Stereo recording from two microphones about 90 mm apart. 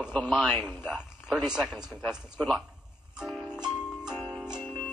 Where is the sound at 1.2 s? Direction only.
10° right (ahead or behind).